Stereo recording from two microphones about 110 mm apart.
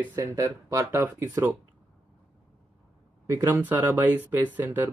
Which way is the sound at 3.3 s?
30° right (ahead or behind).